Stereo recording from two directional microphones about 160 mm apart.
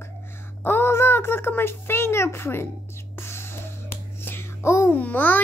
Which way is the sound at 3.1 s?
15° left (ahead or behind).